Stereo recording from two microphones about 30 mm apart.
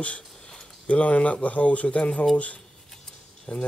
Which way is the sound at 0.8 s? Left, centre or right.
Left.